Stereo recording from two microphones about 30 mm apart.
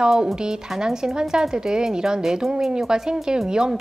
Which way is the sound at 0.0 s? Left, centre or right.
Right.